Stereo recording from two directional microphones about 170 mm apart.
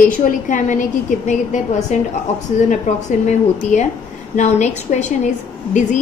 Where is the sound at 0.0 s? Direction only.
50° left (ahead or behind).